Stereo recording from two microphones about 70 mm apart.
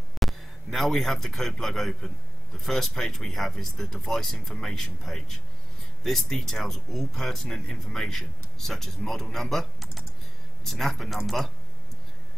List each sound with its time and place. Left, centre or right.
0.2 s a man's voice: centre